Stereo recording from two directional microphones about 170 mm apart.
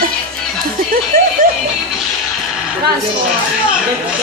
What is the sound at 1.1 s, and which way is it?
Speech, 60° right (ahead or behind).